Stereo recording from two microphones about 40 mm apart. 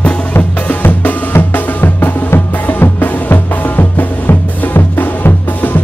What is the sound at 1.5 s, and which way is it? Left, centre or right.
Music, left.